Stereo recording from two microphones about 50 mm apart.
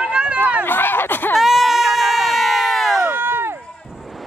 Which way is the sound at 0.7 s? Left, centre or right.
Left.